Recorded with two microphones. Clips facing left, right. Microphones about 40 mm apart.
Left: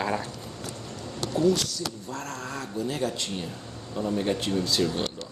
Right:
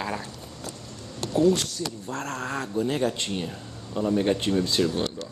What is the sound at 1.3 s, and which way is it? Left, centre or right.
Speech, right.